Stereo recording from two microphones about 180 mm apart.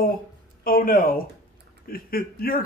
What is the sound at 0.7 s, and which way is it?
A man's voice, 50° left (ahead or behind).